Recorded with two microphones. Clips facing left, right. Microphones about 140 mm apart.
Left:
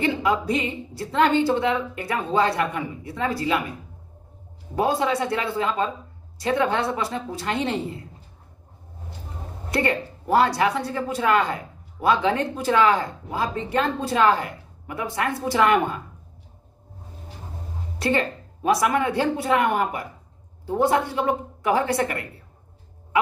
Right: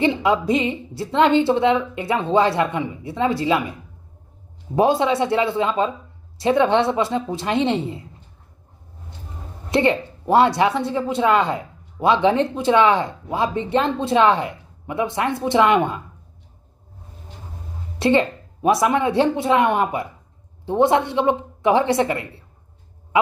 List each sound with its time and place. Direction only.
0.0 s speech: 25° right (ahead or behind)
4.7 s speech: 25° right (ahead or behind)
9.7 s speech: 25° right (ahead or behind)
17.9 s speech: 25° right (ahead or behind)